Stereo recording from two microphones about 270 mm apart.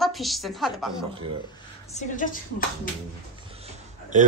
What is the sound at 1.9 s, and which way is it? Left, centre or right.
Speech, left.